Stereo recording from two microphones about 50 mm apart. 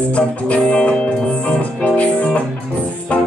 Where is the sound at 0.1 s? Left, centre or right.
Left.